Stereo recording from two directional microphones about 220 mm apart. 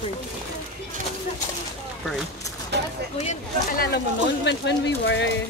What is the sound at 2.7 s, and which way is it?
Speech, 50° right (ahead or behind).